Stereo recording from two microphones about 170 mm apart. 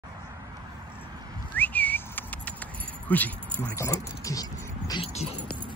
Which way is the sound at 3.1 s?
10° left (ahead or behind).